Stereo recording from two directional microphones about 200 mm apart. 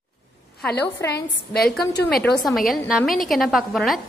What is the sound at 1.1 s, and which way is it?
Speech, 55° left (ahead or behind).